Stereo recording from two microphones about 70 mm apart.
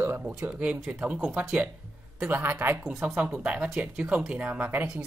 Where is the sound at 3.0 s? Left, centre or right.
Centre.